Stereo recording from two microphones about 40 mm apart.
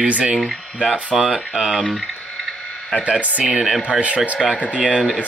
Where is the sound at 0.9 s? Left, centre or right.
Right.